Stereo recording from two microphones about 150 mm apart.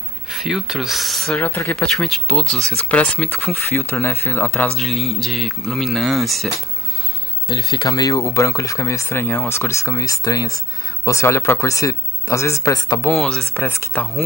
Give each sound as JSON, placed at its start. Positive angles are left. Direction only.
{"t": 0.3, "sound": "speech", "side_deg": 0}
{"t": 4.7, "sound": "speech", "side_deg": 0}
{"t": 7.4, "sound": "speech", "side_deg": 25}
{"t": 13.2, "sound": "speech", "side_deg": 5}
{"t": 13.6, "sound": "speech", "side_deg": 15}